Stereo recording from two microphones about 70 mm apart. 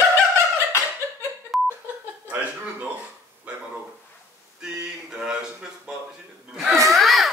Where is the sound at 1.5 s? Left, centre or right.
Centre.